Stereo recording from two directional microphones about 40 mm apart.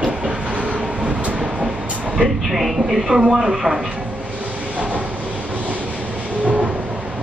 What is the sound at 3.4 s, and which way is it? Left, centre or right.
Speech, centre.